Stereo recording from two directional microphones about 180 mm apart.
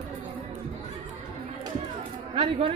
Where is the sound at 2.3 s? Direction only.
30° right (ahead or behind).